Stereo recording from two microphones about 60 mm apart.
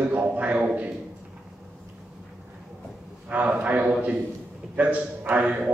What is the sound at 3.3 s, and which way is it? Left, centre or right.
A man's voice, right.